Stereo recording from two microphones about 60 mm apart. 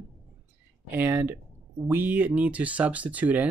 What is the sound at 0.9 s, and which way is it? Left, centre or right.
Speech, right.